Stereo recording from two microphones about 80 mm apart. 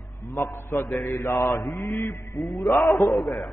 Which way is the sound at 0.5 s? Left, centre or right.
Left.